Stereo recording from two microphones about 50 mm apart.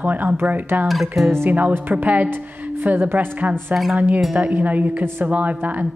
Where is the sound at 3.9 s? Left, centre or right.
Right.